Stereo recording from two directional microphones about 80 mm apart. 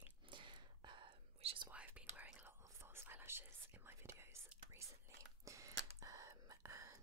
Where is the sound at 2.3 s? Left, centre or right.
Right.